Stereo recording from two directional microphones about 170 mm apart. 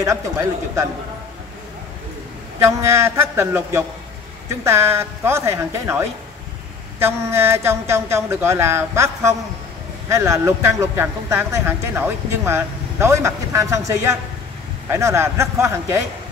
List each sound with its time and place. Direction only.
2.6 s speech: 15° right (ahead or behind)